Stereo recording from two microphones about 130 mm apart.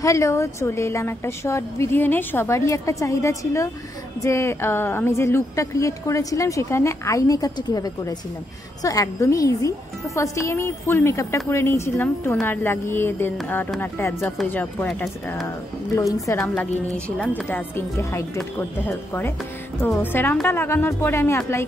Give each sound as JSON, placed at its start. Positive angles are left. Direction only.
{"t": 0.0, "sound": "a woman's voice", "side_deg": 25}
{"t": 16.0, "sound": "a woman's voice", "side_deg": 25}
{"t": 16.3, "sound": "speech", "side_deg": 10}
{"t": 17.5, "sound": "a woman's voice", "side_deg": 20}